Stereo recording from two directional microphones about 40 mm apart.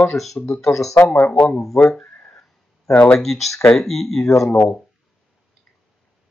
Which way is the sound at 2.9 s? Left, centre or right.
Left.